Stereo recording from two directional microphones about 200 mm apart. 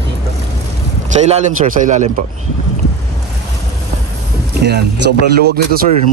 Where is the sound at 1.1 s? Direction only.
35° right (ahead or behind).